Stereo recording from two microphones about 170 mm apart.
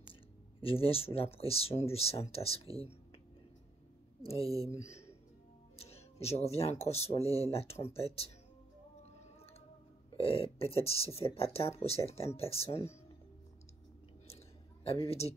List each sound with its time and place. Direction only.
0.1 s speech: 35° left (ahead or behind)
4.4 s speech: 20° right (ahead or behind)
5.8 s speech: 35° left (ahead or behind)
10.1 s speech: 35° left (ahead or behind)
14.2 s a sound: 35° left (ahead or behind)